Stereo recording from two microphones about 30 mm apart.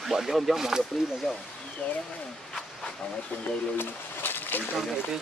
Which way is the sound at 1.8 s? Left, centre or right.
Left.